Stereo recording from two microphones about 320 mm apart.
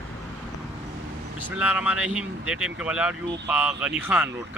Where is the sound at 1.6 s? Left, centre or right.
Centre.